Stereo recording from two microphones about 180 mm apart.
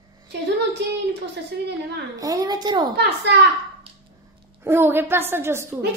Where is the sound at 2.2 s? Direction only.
20° right (ahead or behind).